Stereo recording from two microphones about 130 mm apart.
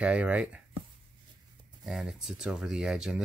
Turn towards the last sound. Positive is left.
turn(degrees=-5)  # may be behind; listen again after turning